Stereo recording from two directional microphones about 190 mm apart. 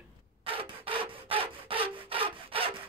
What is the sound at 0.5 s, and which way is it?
Wood, 30° right (ahead or behind).